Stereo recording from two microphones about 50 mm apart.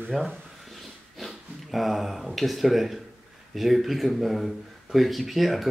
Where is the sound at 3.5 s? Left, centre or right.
Centre.